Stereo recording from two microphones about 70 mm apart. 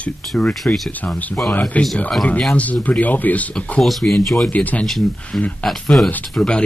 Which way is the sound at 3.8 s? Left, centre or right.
Centre.